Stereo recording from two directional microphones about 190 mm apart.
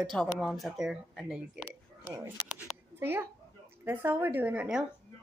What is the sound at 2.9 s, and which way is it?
A woman's voice, 10° right (ahead or behind).